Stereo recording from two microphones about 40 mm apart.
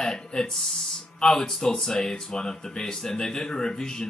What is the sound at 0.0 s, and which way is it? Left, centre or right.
Speech, centre.